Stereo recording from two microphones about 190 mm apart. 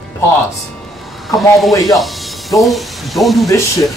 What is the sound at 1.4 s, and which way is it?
Speech, centre (ahead or behind).